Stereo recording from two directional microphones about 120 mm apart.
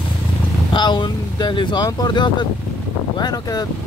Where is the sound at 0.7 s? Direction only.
40° left (ahead or behind).